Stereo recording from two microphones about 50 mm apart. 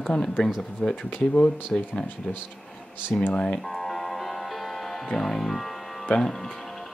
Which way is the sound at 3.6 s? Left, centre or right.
Centre.